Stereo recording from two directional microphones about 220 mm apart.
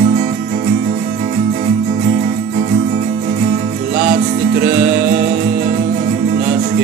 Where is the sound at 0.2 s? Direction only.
35° right (ahead or behind).